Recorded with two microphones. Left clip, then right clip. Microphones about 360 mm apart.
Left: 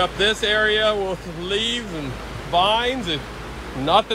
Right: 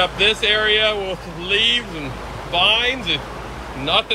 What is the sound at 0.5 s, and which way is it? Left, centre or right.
Speech, left.